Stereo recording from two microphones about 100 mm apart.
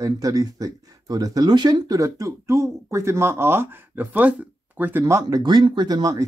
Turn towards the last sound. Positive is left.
turn(degrees=-40)  # may be behind; listen again after turning